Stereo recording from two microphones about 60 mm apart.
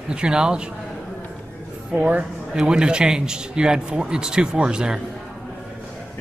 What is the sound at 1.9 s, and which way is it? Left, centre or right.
Speech, right.